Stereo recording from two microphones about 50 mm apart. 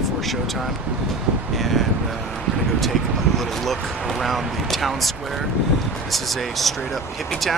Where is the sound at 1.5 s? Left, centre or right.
Centre.